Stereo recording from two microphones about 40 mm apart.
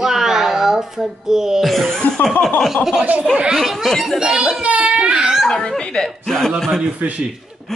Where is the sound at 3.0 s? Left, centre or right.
Right.